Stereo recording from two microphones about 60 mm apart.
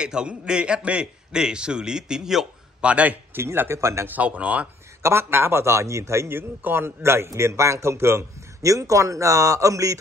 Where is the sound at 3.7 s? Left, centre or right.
Right.